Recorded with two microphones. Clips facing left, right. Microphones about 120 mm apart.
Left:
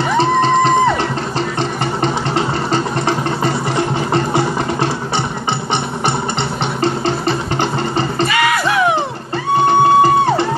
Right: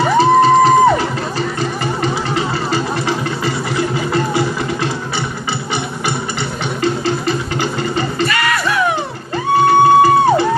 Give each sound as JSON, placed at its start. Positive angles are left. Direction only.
{"t": 0.2, "sound": "music", "side_deg": -5}
{"t": 1.6, "sound": "music", "side_deg": 30}
{"t": 6.8, "sound": "music", "side_deg": 30}